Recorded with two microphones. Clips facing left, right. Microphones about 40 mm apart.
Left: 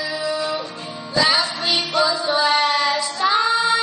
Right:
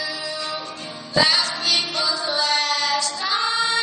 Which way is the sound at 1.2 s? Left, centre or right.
Centre.